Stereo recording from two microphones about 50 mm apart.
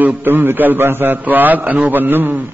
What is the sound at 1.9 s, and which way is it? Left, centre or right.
Speech, right.